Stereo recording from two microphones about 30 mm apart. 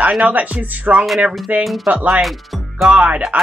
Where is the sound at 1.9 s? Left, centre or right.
Right.